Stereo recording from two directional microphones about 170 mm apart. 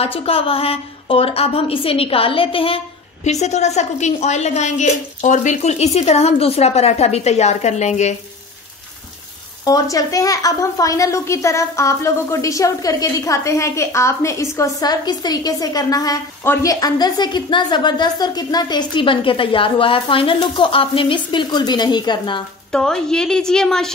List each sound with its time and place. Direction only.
0.0 s a woman's voice: 35° left (ahead or behind)
9.7 s a woman's voice: 20° left (ahead or behind)
22.7 s a woman's voice: 5° left (ahead or behind)